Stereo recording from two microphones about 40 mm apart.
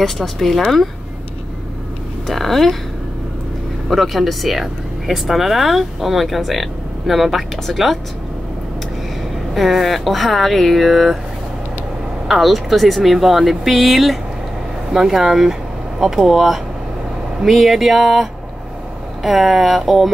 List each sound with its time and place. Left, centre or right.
0.0 s speech: centre
2.2 s speech: centre
3.9 s speech: centre
9.5 s speech: centre
12.3 s speech: centre
14.9 s speech: centre